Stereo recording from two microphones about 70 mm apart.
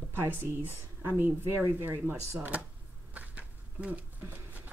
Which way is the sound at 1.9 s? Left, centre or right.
Right.